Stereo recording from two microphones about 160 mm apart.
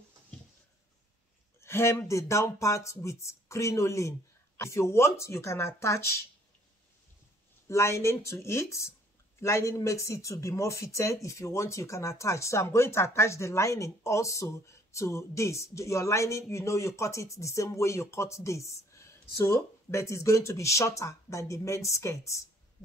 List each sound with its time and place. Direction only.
1.6 s speech: 15° left (ahead or behind)
7.6 s speech: 20° left (ahead or behind)